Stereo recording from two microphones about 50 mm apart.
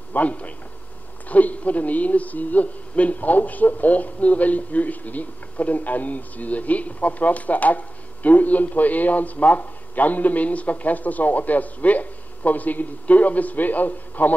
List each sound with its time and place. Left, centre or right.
0.1 s a man's voice: left